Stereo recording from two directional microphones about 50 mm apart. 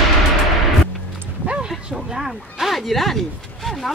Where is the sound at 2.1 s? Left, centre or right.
Centre.